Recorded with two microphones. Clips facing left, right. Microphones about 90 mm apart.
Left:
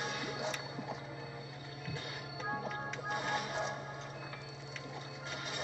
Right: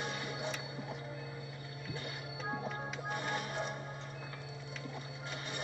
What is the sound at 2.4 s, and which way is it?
Music, 20° left (ahead or behind).